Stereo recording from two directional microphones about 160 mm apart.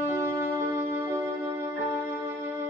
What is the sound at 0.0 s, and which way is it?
Music, 20° right (ahead or behind).